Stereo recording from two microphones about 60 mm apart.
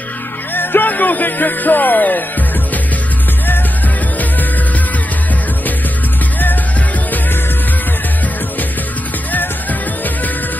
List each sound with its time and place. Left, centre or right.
0.6 s speech: left
9.3 s music: left